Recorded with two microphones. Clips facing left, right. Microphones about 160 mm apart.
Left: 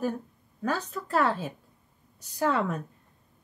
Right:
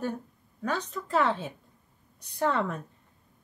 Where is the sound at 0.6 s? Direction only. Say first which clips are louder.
Left 1 dB; 5° left (ahead or behind).